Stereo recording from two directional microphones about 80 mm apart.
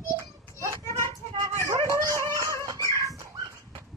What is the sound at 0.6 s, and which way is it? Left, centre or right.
Children playing, right.